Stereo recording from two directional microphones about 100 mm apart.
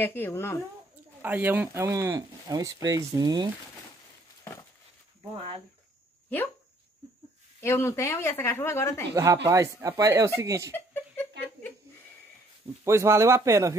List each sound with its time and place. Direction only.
0.0 s a woman's voice: 20° left (ahead or behind)
1.2 s speech: 15° right (ahead or behind)
1.8 s speech: 30° right (ahead or behind)
2.4 s speech: 40° right (ahead or behind)
5.3 s speech: 70° right (ahead or behind)
7.6 s a woman's voice: 25° left (ahead or behind)
9.1 s speech: 30° right (ahead or behind)
10.7 s chuckle: 20° left (ahead or behind)
12.8 s speech: 30° right (ahead or behind)